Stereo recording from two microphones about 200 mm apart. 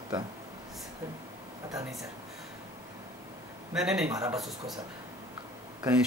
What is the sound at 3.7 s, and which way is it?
Speech, 5° right (ahead or behind).